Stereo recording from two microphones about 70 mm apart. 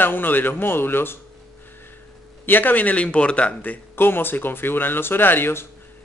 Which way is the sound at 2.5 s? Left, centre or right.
Left.